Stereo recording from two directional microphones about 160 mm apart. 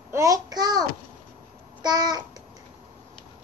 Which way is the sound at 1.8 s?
25° right (ahead or behind).